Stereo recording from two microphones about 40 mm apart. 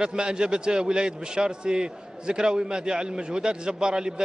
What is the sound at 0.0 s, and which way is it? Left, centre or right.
A man's voice, right.